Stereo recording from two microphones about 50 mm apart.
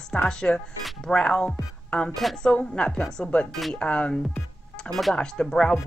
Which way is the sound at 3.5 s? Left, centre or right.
Centre.